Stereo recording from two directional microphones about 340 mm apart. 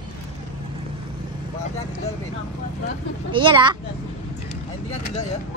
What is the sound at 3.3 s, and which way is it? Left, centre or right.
Speech, centre.